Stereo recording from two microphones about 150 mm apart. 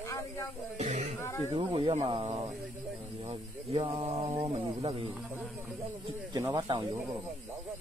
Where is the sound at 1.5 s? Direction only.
35° right (ahead or behind).